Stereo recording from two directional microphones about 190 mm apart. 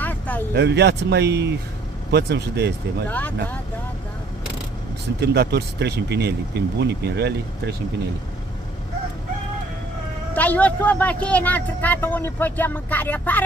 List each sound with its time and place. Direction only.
0.0 s a sound: 10° left (ahead or behind)
0.6 s speech: 65° right (ahead or behind)
3.1 s speech: 10° left (ahead or behind)
5.2 s speech: 60° right (ahead or behind)
10.3 s speech: 10° left (ahead or behind)